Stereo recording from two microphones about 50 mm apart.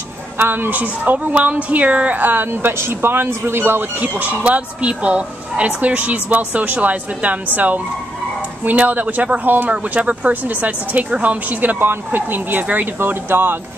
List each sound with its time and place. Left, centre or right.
0.4 s speech: right
4.0 s speech: right
13.0 s speech: right